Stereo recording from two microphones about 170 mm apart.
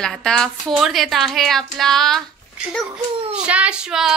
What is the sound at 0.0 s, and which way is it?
A woman's voice, 5° left (ahead or behind).